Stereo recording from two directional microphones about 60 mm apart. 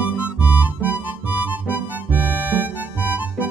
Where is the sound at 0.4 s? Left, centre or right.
Right.